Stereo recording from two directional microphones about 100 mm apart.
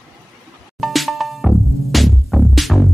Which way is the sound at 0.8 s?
Centre (ahead or behind).